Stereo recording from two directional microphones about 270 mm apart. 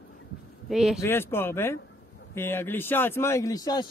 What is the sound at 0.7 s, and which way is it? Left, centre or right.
Speech, centre.